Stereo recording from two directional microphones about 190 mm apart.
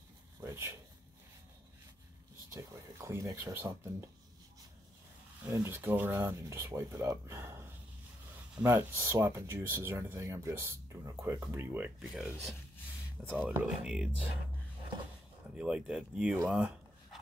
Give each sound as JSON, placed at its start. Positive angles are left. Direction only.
{"t": 0.4, "sound": "a sound", "side_deg": -15}
{"t": 2.5, "sound": "speech", "side_deg": -15}
{"t": 5.5, "sound": "speech", "side_deg": -10}
{"t": 15.5, "sound": "speech", "side_deg": -5}